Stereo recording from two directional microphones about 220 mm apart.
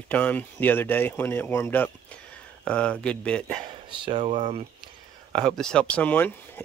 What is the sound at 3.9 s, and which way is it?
Speech, 20° right (ahead or behind).